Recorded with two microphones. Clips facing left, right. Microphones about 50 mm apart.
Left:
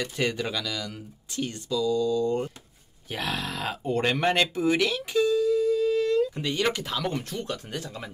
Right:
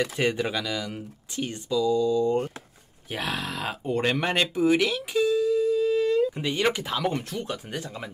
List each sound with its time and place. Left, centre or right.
0.1 s speech: right
3.1 s speech: centre